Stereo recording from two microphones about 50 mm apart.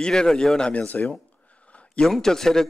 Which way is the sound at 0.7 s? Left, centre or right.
Left.